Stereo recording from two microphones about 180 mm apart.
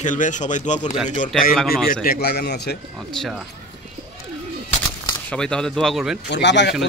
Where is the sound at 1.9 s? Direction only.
55° left (ahead or behind).